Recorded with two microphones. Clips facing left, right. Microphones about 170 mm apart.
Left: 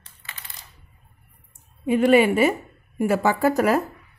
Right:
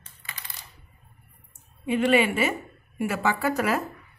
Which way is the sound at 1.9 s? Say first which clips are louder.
Left 5 dB; 40° left (ahead or behind).